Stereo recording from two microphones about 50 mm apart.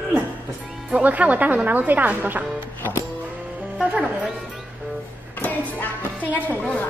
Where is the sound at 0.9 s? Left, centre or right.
Right.